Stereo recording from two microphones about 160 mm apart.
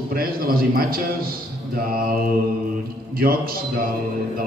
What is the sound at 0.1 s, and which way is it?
A man's voice, 65° right (ahead or behind).